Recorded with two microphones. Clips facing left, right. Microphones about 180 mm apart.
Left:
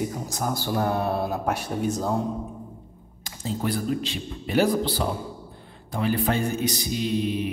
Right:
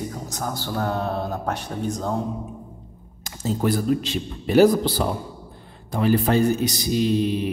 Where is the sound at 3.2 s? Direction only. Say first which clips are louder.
Right 5 dB; 45° right (ahead or behind).